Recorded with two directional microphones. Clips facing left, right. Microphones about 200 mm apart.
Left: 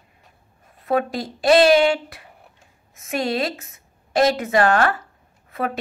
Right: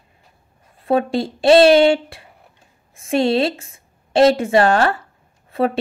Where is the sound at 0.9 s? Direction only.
25° right (ahead or behind).